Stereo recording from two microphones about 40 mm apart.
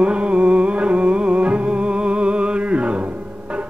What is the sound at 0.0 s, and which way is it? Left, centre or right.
Music, right.